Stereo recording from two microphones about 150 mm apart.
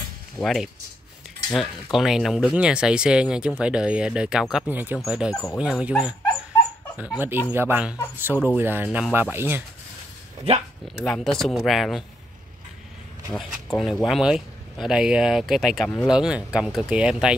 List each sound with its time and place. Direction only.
0.4 s speech: centre (ahead or behind)
5.3 s speech: 15° left (ahead or behind)
5.6 s speech: 5° right (ahead or behind)
7.2 s speech: 15° right (ahead or behind)
11.0 s speech: centre (ahead or behind)
13.7 s speech: centre (ahead or behind)